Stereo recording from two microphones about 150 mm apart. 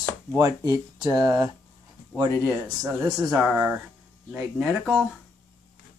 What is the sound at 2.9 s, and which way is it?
Speech, 25° right (ahead or behind).